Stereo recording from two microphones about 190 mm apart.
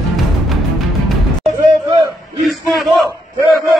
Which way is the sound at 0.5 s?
Centre (ahead or behind).